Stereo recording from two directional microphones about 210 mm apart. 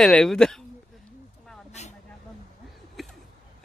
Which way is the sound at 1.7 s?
30° left (ahead or behind).